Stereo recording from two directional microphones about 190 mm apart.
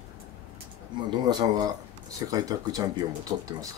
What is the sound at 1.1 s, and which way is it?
Speech, 20° right (ahead or behind).